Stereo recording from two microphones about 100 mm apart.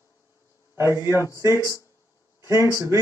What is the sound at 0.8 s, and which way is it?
Speech, 25° right (ahead or behind).